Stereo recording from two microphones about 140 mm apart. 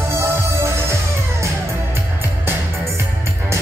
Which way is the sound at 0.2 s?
20° right (ahead or behind).